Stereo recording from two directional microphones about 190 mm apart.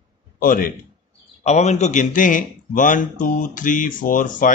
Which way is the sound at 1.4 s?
35° left (ahead or behind).